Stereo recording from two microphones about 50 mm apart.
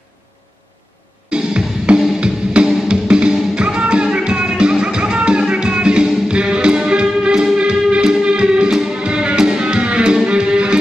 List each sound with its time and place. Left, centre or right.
1.3 s drum kit: centre
2.9 s music: centre